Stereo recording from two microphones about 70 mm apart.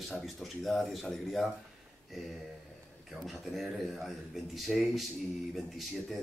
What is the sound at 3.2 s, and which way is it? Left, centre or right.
Speech, centre.